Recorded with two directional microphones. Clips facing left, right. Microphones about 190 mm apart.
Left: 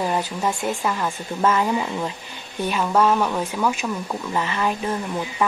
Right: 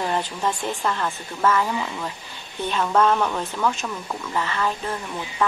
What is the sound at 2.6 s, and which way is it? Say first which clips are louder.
Speech: left 1 dB; 10° left (ahead or behind).